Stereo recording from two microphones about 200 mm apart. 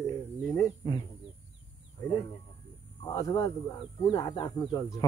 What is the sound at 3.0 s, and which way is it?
Speech, 15° left (ahead or behind).